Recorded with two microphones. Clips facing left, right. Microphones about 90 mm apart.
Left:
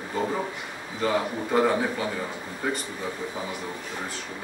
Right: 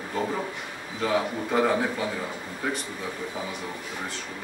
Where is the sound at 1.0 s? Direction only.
Centre (ahead or behind).